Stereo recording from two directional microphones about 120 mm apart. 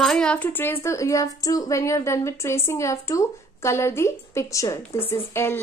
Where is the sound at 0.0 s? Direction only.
5° left (ahead or behind).